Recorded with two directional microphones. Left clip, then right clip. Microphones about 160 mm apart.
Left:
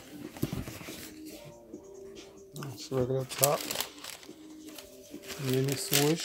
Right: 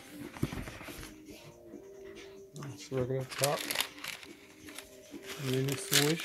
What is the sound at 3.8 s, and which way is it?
Crumpling, 20° left (ahead or behind).